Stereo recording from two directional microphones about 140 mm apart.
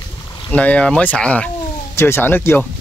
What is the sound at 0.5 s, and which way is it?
Speech, 10° left (ahead or behind).